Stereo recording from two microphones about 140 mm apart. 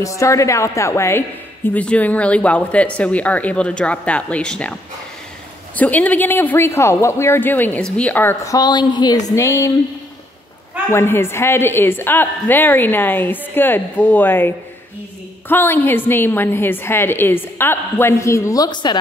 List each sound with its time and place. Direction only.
0.0 s a woman's voice: 20° left (ahead or behind)
5.8 s a woman's voice: 10° left (ahead or behind)
8.5 s a woman's voice: 30° left (ahead or behind)
10.9 s a woman's voice: 20° left (ahead or behind)